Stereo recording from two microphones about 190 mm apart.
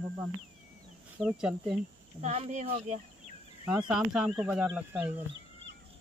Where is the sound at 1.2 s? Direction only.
5° right (ahead or behind).